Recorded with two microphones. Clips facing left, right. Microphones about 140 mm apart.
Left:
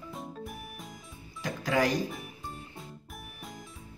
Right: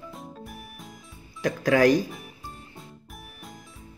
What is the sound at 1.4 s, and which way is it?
Speech, 80° right.